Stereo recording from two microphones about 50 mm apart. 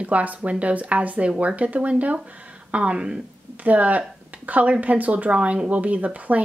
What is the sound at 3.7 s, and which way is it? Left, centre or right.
Speech, right.